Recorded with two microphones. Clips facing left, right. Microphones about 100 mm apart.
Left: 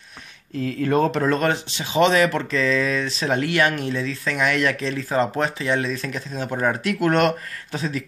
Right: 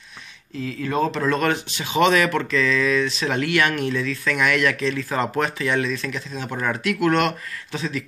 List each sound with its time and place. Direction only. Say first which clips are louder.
0.6 s speech: left 3 dB; 50° left (ahead or behind)
1.2 s speech: left 1 dB; 35° left (ahead or behind)